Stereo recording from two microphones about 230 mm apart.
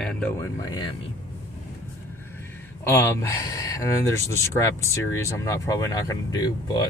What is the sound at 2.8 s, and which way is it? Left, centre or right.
Speech, centre.